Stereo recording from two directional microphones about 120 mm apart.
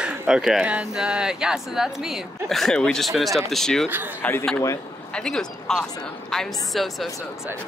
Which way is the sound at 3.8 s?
15° right (ahead or behind).